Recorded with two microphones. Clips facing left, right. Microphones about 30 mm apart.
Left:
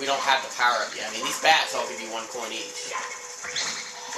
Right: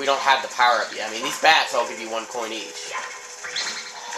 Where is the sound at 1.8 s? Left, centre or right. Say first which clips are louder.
Right 4 dB; right.